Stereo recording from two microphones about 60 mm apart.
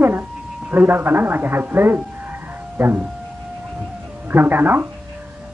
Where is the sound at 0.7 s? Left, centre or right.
Right.